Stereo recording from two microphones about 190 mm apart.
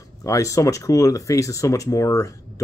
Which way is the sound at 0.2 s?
15° left (ahead or behind).